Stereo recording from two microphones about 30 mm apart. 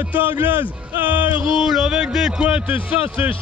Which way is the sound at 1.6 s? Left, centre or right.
Centre.